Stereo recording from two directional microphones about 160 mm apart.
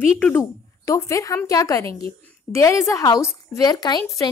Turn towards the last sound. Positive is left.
turn(degrees=25)  # may be behind; listen again after turning